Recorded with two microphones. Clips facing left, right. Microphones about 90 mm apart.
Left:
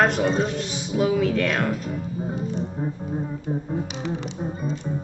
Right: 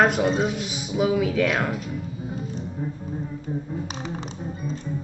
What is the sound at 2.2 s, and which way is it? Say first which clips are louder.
Music: left 4 dB; 40° left (ahead or behind).